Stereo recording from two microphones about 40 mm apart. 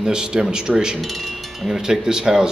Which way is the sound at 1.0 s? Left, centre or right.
Centre.